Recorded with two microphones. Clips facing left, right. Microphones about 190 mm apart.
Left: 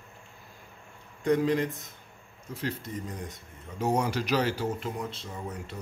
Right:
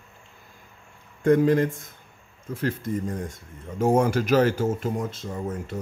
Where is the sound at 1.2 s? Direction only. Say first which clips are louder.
Right 6 dB; 50° right (ahead or behind).